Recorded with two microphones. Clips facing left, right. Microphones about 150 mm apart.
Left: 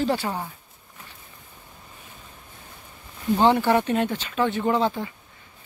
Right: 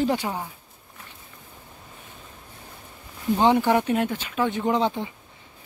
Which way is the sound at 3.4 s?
10° right (ahead or behind).